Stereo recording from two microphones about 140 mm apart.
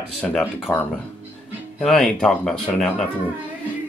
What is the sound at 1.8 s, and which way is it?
Speech, 5° left (ahead or behind).